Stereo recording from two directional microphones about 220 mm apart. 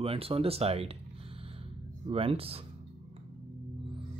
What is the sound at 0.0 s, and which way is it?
Speech, 25° right (ahead or behind).